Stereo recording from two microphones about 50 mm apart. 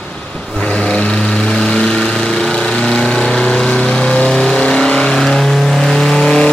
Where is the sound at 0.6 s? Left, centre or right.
Left.